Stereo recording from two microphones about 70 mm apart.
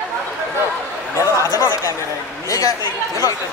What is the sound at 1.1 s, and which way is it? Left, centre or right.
Speech, left.